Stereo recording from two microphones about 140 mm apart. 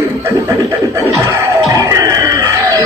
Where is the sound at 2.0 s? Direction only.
25° right (ahead or behind).